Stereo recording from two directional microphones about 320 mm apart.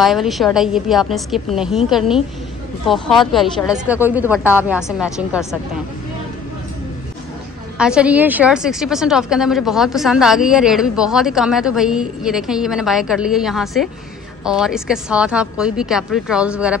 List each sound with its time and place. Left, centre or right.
0.0 s a woman's voice: centre
7.7 s a woman's voice: centre